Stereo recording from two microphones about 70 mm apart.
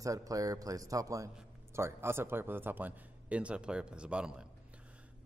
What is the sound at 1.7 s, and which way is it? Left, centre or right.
Speech, right.